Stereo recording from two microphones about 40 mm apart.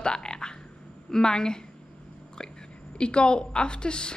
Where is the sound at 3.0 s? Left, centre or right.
Left.